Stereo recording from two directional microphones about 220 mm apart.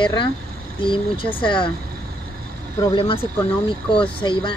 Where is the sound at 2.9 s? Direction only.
25° left (ahead or behind).